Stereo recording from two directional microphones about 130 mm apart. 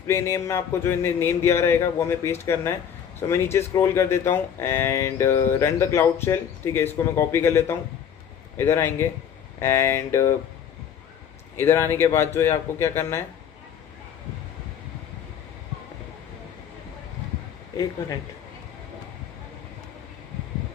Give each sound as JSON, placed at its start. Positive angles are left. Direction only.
{"t": 0.0, "sound": "speech", "side_deg": 20}
{"t": 11.5, "sound": "speech", "side_deg": 20}